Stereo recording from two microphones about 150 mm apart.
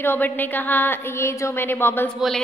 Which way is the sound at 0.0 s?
15° left (ahead or behind).